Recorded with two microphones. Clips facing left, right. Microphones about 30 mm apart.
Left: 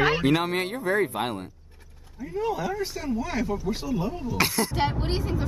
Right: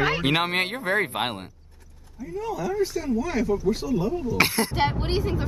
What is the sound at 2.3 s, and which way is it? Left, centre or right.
Speech, left.